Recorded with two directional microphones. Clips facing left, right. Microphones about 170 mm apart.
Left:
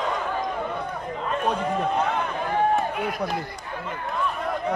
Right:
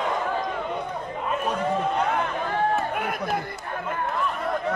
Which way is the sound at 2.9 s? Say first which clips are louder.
Even; 55° right (ahead or behind).